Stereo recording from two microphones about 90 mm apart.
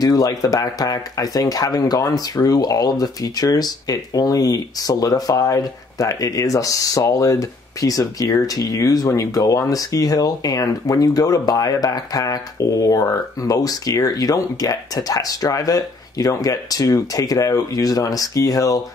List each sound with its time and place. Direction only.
0.0 s speech: 45° left (ahead or behind)